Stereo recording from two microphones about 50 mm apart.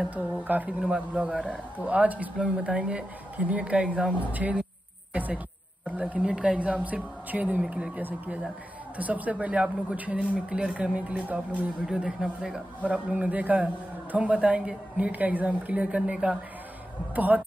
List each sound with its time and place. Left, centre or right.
0.1 s speech: right
2.3 s speech: centre
4.3 s speech: right
5.1 s music: right
5.9 s speech: right
6.2 s speech: centre
6.6 s speech: right
12.8 s speech: right
17.1 s speech: right